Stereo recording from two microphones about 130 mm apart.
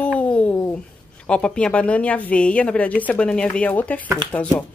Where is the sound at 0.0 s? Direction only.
10° left (ahead or behind).